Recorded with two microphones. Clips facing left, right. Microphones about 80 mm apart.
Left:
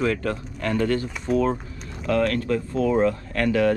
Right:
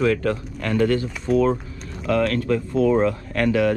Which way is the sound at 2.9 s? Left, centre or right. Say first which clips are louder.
Left 1 dB; right.